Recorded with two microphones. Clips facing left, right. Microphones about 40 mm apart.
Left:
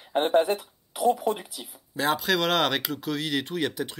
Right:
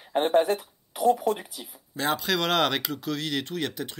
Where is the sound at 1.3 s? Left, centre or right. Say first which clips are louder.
Right 1 dB; left.